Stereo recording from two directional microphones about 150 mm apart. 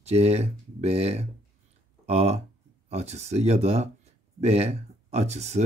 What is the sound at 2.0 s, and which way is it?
Speech, 45° right (ahead or behind).